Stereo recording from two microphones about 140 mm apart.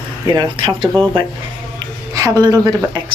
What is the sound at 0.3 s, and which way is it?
Speech, 30° right (ahead or behind).